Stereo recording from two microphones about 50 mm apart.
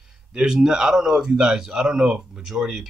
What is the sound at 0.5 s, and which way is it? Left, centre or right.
Speech, centre.